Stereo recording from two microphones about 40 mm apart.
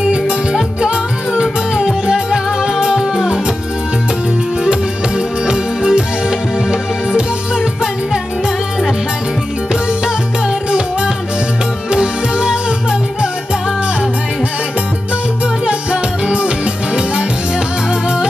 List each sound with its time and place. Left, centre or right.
0.1 s music: right
4.6 s music: centre
7.2 s music: centre
9.7 s music: right
15.6 s music: right